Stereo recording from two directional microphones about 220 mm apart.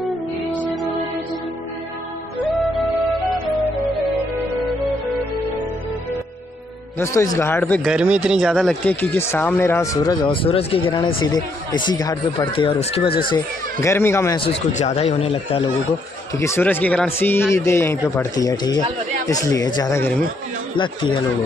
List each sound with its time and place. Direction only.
7.0 s speech: 10° left (ahead or behind)
7.8 s speech: 5° right (ahead or behind); by 13.1 s 25° left (ahead or behind)
13.3 s speech: 15° left (ahead or behind)
14.4 s speech: 30° left (ahead or behind)
16.3 s speech: 10° left (ahead or behind)
20.7 s speech: 20° left (ahead or behind)